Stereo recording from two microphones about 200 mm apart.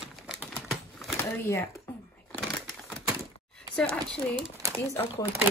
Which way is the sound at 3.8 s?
5° left (ahead or behind).